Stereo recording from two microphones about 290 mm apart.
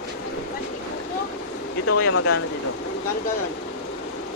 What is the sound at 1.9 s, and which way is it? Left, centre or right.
Speech, left.